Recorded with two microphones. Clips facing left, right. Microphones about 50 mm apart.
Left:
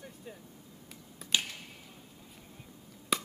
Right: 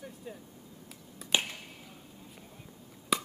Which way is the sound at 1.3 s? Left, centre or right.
Right.